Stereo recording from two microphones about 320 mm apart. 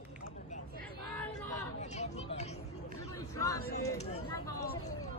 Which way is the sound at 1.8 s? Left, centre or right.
Left.